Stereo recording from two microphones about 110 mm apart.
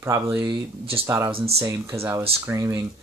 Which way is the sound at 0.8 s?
60° right (ahead or behind).